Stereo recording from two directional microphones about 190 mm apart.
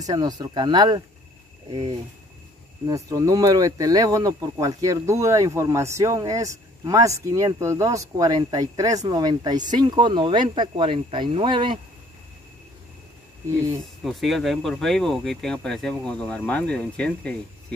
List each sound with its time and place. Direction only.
0.0 s speech: 20° right (ahead or behind)
2.9 s speech: 20° right (ahead or behind)
13.5 s speech: 15° right (ahead or behind)
14.0 s speech: centre (ahead or behind)